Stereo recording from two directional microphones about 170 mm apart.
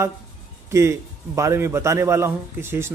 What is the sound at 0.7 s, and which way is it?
A man's voice, 15° right (ahead or behind).